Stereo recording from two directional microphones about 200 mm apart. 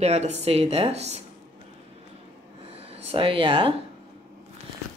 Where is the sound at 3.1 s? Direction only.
25° right (ahead or behind).